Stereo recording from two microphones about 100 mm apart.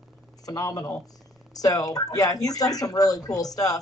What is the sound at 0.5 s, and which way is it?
Speech, 40° left (ahead or behind).